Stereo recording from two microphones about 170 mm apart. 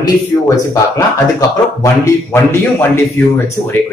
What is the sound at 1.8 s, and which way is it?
Speech, 15° left (ahead or behind).